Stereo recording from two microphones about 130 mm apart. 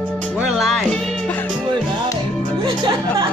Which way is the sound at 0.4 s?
5° right (ahead or behind).